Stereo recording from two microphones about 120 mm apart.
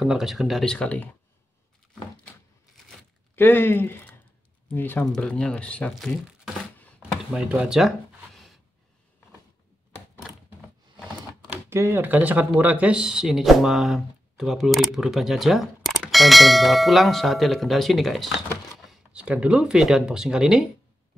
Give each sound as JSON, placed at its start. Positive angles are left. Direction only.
{"t": 0.0, "sound": "speech", "side_deg": -5}
{"t": 3.3, "sound": "speech", "side_deg": 15}
{"t": 5.9, "sound": "crumpling", "side_deg": 5}
{"t": 7.0, "sound": "speech", "side_deg": -5}
{"t": 11.0, "sound": "typewriter", "side_deg": -5}
{"t": 11.7, "sound": "speech", "side_deg": -20}
{"t": 18.9, "sound": "speech", "side_deg": -10}